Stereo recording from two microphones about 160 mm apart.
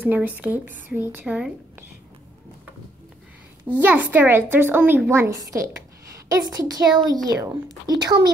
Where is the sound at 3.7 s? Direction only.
10° right (ahead or behind); by 8.3 s 25° right (ahead or behind).